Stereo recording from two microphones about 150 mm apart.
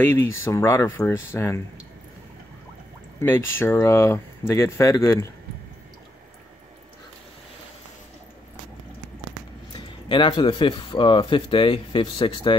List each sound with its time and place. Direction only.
0.0 s speech: 15° left (ahead or behind)
3.2 s speech: 15° left (ahead or behind)
9.7 s speech: 30° left (ahead or behind)